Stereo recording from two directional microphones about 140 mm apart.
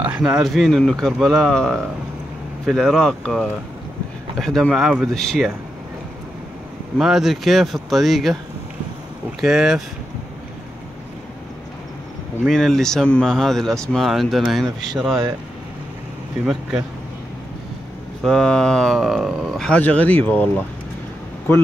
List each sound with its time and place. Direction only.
0.0 s speech: 5° right (ahead or behind)
7.0 s speech: centre (ahead or behind)
9.4 s speech: 5° right (ahead or behind)
12.4 s speech: centre (ahead or behind)
18.2 s speech: 5° left (ahead or behind)